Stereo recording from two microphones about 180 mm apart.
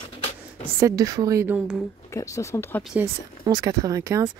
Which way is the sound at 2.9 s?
15° right (ahead or behind).